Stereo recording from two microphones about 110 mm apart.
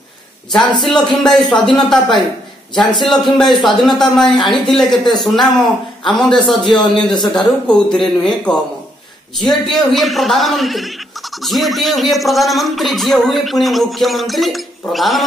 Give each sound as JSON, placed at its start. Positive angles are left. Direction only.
{"t": 0.8, "sound": "speech", "side_deg": 5}
{"t": 2.7, "sound": "a man's voice", "side_deg": 45}
{"t": 3.0, "sound": "speech", "side_deg": 5}
{"t": 6.8, "sound": "speech", "side_deg": 40}
{"t": 7.3, "sound": "speech", "side_deg": 5}